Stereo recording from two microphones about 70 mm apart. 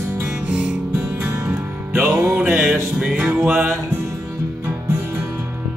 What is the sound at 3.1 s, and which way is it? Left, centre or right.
Music, centre.